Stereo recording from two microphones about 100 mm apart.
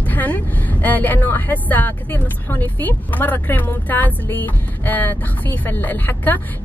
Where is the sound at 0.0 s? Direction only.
15° left (ahead or behind).